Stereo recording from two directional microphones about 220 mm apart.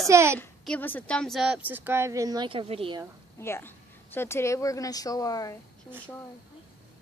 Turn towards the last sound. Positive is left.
turn(degrees=15)  # may be behind; listen again after turning